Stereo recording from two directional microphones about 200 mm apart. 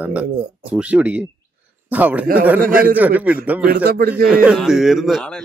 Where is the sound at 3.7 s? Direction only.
50° right (ahead or behind).